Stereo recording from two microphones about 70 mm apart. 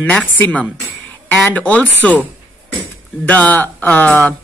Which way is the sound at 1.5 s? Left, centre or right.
Left.